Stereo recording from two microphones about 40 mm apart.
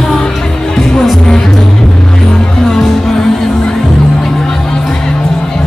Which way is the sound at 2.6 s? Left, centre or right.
Centre.